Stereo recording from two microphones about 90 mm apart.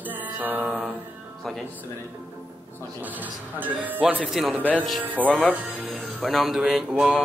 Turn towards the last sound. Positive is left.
turn(degrees=-5)  # may be behind; listen again after turning